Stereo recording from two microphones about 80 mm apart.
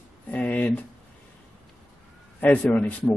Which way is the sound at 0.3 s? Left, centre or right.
Left.